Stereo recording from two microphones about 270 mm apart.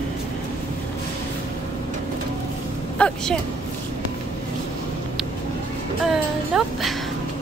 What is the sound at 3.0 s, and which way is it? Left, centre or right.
Speech, centre.